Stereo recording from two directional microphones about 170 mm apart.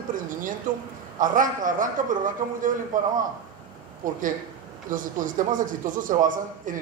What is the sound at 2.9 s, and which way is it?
A man's voice, 50° right (ahead or behind).